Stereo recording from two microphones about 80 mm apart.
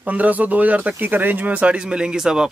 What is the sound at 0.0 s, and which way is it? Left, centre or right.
Speech, centre.